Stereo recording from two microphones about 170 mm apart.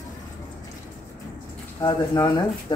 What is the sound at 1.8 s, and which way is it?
Speech, 20° left (ahead or behind).